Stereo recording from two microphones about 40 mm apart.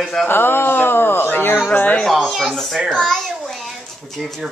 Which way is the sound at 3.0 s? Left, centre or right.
Centre.